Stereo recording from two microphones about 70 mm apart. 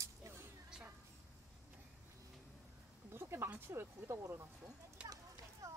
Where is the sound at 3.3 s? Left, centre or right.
Right.